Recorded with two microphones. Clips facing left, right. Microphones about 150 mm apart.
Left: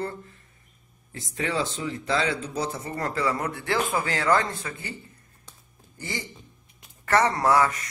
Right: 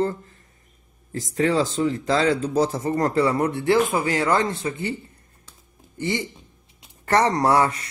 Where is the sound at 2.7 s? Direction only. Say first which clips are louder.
Right 9 dB; 35° right (ahead or behind).